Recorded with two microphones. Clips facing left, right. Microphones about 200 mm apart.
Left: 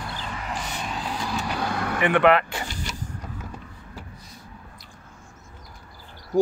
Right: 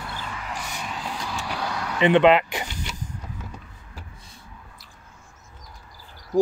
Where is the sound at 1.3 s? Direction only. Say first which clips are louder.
Left 3 dB; 50° left (ahead or behind).